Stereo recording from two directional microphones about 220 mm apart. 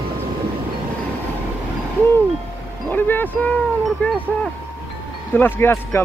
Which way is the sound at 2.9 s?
10° left (ahead or behind).